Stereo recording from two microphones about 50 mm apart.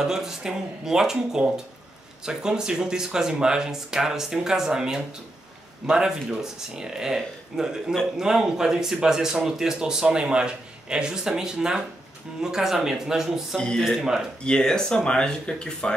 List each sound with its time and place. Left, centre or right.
0.0 s speech: centre
13.6 s speech: centre